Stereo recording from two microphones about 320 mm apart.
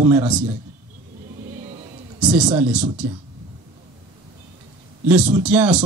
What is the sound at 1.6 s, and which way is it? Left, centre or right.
Music, centre.